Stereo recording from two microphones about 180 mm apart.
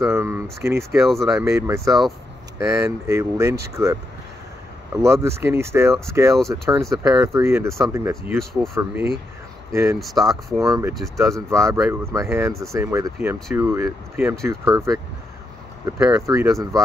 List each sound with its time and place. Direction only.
0.1 s speech: 15° right (ahead or behind)
1.0 s speech: centre (ahead or behind)
1.4 s speech: 15° right (ahead or behind)
5.0 s speech: 15° right (ahead or behind)
9.9 s speech: centre (ahead or behind)
10.6 s speech: 15° right (ahead or behind)